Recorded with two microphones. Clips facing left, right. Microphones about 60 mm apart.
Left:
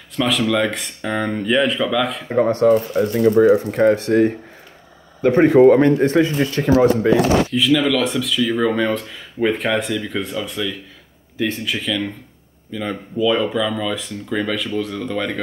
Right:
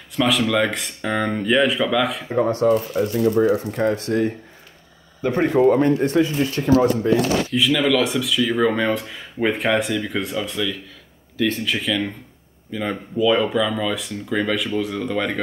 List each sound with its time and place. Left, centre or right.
0.1 s speech: centre
2.3 s speech: left
7.0 s speech: left
7.5 s speech: centre
11.3 s speech: centre
11.6 s speech: centre